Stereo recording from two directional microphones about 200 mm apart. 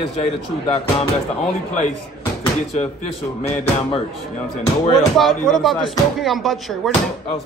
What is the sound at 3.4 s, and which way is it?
Speech, 30° left (ahead or behind).